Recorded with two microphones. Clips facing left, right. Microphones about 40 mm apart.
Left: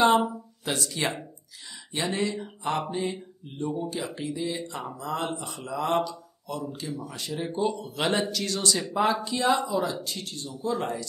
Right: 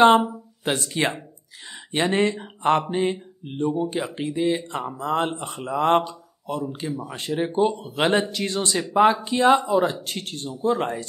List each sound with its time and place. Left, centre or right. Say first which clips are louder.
0.7 s speech: right 5 dB; right
7.1 s speech: right 7 dB; right